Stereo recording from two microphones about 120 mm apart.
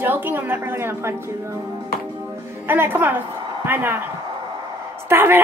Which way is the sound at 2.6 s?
20° right (ahead or behind).